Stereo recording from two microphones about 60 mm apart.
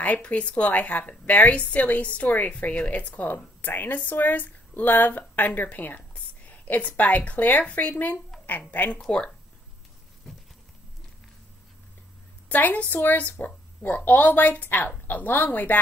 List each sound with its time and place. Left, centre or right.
0.0 s a woman's voice: left
9.0 s speech: centre
12.4 s a woman's voice: left